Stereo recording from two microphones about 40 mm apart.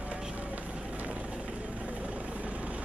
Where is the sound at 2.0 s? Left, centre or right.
Right.